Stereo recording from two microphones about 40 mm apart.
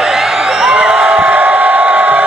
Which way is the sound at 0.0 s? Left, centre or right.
Centre.